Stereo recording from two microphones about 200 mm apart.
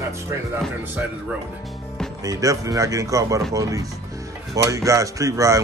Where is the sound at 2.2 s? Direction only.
15° right (ahead or behind).